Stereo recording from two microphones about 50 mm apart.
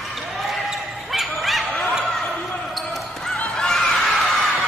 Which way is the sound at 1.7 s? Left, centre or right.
Left.